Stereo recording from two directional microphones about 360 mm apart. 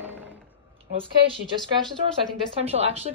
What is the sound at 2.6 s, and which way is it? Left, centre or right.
Speech, centre.